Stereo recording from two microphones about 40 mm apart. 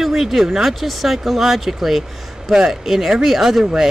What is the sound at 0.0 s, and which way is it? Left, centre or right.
Speech, centre.